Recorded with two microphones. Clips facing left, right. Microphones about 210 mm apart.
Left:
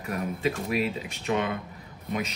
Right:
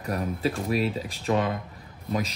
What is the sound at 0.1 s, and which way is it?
A man's voice, 35° right (ahead or behind).